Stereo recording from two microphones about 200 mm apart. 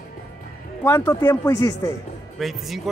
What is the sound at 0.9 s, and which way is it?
Speech, 10° left (ahead or behind).